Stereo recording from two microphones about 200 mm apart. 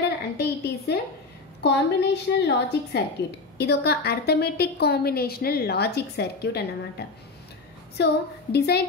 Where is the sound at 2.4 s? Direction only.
55° left (ahead or behind).